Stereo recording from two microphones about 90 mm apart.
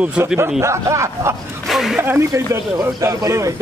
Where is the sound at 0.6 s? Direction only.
35° right (ahead or behind).